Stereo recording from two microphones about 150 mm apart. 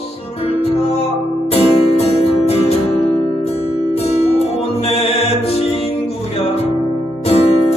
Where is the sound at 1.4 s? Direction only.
40° left (ahead or behind).